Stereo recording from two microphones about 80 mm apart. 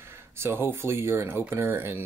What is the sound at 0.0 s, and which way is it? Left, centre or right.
Speech, right.